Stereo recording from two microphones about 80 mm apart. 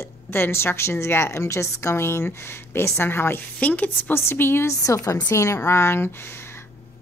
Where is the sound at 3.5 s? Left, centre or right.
Centre.